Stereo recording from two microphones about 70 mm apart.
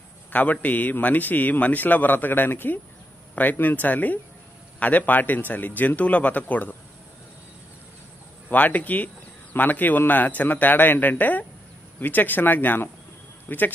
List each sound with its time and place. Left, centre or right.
0.3 s speech: left
8.5 s speech: left